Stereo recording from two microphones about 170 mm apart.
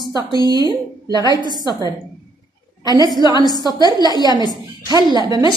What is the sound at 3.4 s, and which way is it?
A woman's voice, 25° left (ahead or behind).